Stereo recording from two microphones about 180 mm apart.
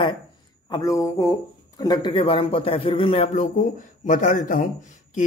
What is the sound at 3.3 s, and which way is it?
A man's voice, 45° left (ahead or behind).